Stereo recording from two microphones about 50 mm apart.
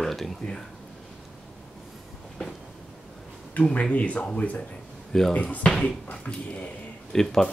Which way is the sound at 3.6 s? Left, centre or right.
Left.